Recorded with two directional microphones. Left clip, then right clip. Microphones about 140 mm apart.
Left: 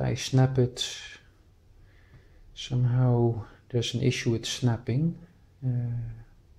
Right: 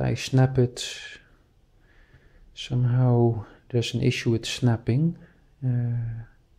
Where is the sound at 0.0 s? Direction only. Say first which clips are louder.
Right 2 dB; 30° right (ahead or behind).